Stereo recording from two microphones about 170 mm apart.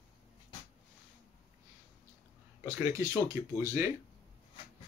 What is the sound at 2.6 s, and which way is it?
Speech, 15° right (ahead or behind).